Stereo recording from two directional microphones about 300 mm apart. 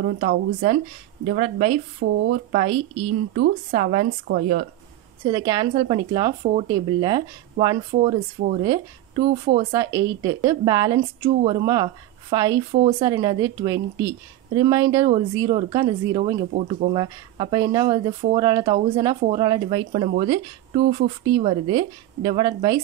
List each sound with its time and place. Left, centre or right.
0.2 s speech: right
2.0 s speech: right
2.5 s speech: right
5.2 s a woman's voice: centre
9.7 s a woman's voice: centre